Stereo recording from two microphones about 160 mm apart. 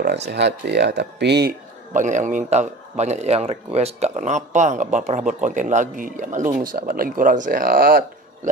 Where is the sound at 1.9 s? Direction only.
50° right (ahead or behind).